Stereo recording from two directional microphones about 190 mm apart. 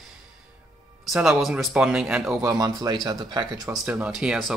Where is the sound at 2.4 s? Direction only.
20° right (ahead or behind).